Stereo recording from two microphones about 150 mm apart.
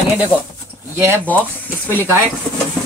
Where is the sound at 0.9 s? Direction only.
15° right (ahead or behind).